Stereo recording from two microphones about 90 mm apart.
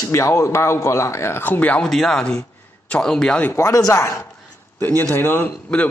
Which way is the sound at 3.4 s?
30° left (ahead or behind).